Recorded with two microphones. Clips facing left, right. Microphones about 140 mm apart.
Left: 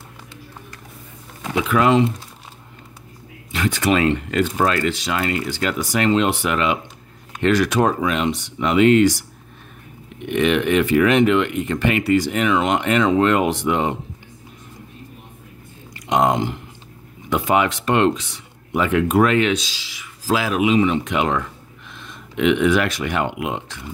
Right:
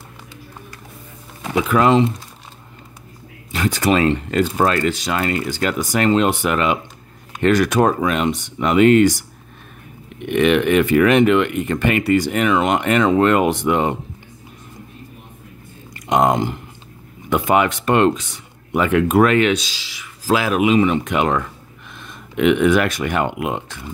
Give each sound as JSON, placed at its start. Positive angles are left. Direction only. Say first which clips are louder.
{"t": 1.5, "sound": "speech", "louder": "right 2 dB", "side_deg": -40}
{"t": 3.5, "sound": "speech", "louder": "right 2 dB", "side_deg": -35}
{"t": 10.2, "sound": "speech", "louder": "right 3 dB", "side_deg": -60}
{"t": 15.9, "sound": "speech", "louder": "right 2 dB", "side_deg": -50}